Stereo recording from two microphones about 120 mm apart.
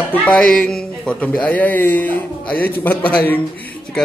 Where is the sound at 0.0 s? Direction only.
10° left (ahead or behind).